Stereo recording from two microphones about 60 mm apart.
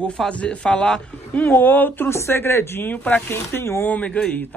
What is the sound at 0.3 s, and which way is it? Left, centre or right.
Speech, centre.